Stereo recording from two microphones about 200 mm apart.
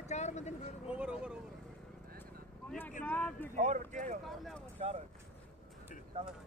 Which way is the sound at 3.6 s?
35° right (ahead or behind).